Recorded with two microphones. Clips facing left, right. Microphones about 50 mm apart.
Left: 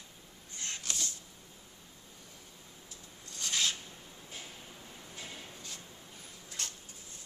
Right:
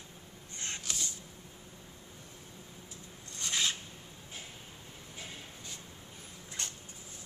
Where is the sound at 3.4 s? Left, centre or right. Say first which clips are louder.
Even; centre.